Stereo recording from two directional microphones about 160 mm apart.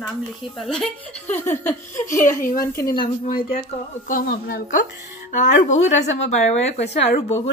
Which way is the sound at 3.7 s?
50° left (ahead or behind).